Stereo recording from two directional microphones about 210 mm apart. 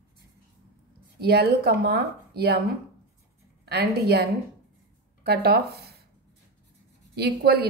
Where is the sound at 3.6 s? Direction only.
50° right (ahead or behind).